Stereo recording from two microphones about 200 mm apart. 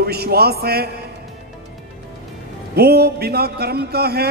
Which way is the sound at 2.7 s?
50° right (ahead or behind).